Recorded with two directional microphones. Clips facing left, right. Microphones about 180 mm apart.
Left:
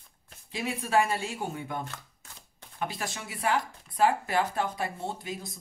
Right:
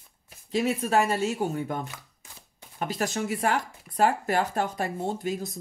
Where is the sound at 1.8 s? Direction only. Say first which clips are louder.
Right 1 dB; 10° right (ahead or behind).